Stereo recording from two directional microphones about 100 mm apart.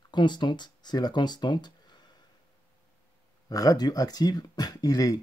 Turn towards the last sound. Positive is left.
turn(degrees=40)  # may be behind; listen again after turning